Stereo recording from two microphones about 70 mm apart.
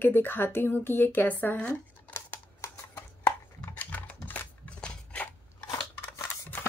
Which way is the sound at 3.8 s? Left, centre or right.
Left.